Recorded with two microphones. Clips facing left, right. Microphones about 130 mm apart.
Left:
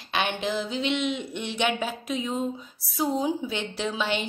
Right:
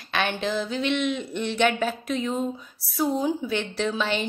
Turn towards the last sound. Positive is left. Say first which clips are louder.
# right 2 dB
turn(degrees=15)  # may be behind; listen again after turning